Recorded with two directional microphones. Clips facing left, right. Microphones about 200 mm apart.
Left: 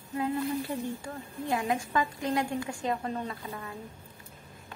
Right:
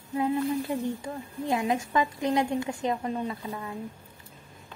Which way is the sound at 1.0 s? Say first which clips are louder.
Right 3 dB; 20° right (ahead or behind).